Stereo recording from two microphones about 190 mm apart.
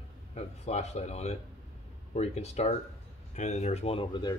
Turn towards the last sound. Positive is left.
turn(degrees=25)  # may be behind; listen again after turning